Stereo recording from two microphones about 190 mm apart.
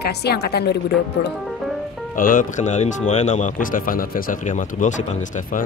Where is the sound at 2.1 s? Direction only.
45° left (ahead or behind).